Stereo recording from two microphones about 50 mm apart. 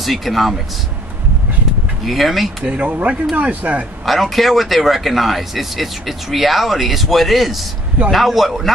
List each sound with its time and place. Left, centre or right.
0.0 s speech: centre
2.0 s speech: centre
2.6 s speech: right
4.0 s speech: centre